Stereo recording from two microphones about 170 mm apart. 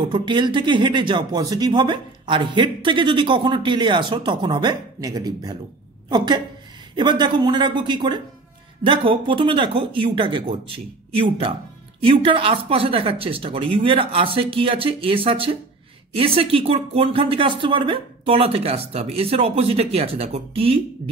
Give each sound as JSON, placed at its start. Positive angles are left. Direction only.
{"t": 0.0, "sound": "a woman's voice", "side_deg": -30}